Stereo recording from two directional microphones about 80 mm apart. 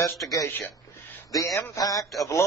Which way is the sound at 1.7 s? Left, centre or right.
Left.